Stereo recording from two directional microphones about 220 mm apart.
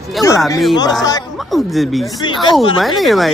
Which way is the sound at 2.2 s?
20° left (ahead or behind).